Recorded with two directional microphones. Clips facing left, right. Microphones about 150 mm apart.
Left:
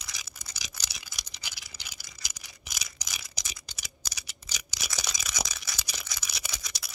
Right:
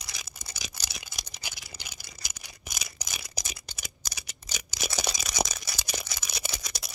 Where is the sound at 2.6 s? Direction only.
50° right (ahead or behind).